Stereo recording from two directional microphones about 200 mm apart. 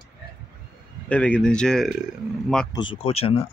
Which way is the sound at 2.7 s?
25° left (ahead or behind).